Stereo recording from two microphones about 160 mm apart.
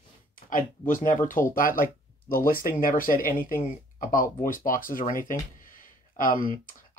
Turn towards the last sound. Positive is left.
turn(degrees=60)  # may be behind; listen again after turning